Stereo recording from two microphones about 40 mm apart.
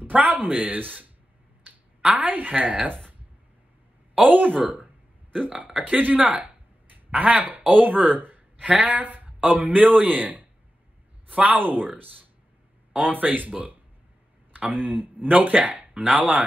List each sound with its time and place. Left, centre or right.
0.1 s a man's voice: right
4.1 s a man's voice: right
8.6 s a man's voice: right
11.6 s a man's voice: right
14.7 s a man's voice: right